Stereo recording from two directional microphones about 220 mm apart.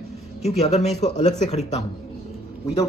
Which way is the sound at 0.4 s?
30° left (ahead or behind).